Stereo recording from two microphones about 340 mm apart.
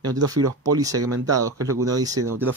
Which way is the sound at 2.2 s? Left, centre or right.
Right.